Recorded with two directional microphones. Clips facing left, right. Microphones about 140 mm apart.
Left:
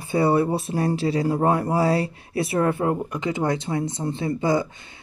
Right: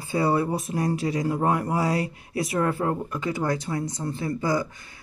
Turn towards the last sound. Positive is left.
turn(degrees=25)  # may be behind; listen again after turning